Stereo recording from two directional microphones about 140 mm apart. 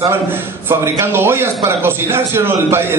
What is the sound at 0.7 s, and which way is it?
A man's voice, 15° right (ahead or behind).